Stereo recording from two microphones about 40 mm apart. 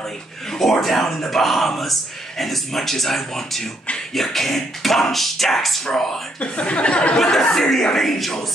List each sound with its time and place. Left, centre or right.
0.6 s speech: centre
6.4 s speech: left
7.2 s speech: centre